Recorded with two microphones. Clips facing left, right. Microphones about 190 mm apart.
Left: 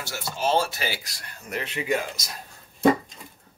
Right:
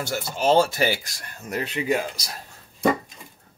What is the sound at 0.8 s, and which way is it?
Speech, 50° right (ahead or behind).